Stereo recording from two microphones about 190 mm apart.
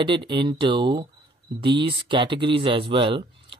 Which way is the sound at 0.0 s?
25° right (ahead or behind).